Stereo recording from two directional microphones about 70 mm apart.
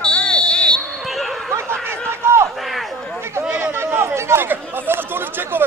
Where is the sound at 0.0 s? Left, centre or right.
Centre.